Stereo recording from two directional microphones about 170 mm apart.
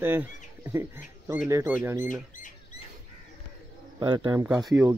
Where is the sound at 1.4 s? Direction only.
15° right (ahead or behind).